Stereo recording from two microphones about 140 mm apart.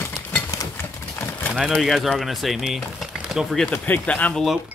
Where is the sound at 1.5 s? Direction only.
5° right (ahead or behind).